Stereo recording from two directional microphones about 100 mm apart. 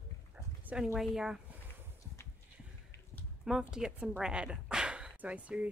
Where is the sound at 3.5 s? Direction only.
5° right (ahead or behind).